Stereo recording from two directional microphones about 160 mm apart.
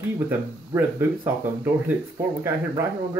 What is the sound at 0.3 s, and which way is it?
Speech, 15° right (ahead or behind).